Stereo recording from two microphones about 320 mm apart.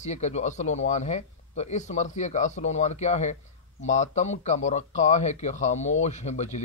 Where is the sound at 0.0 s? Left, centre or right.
Left.